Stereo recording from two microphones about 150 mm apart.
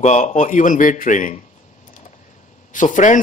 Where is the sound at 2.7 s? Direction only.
60° left (ahead or behind).